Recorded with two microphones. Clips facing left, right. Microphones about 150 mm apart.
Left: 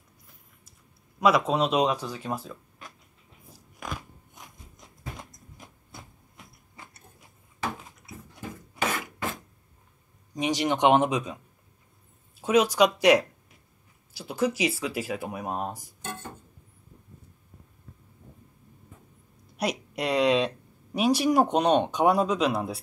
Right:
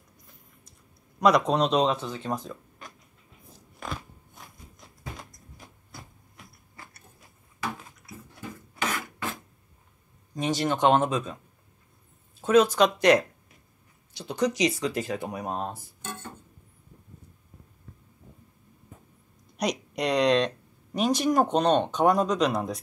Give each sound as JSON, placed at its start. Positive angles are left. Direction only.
{"t": 1.2, "sound": "speech", "side_deg": 5}
{"t": 5.3, "sound": "printer", "side_deg": 20}
{"t": 10.3, "sound": "speech", "side_deg": 15}
{"t": 12.4, "sound": "speech", "side_deg": 10}
{"t": 19.5, "sound": "speech", "side_deg": 5}